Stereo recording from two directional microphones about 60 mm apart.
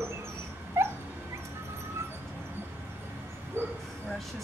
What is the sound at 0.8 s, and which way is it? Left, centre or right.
Dog, right.